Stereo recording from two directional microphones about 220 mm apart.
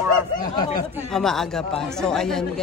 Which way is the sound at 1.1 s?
Centre (ahead or behind).